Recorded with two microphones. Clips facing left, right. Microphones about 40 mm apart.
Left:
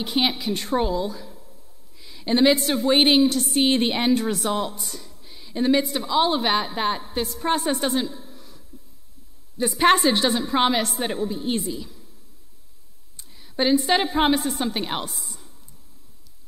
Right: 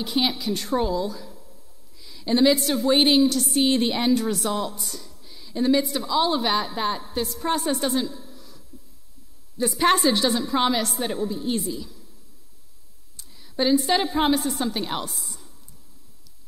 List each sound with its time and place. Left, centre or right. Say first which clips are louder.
0.0 s a woman's voice: left 1 dB; left
13.1 s a woman's voice: left 1 dB; left
15.0 s a sound: even; left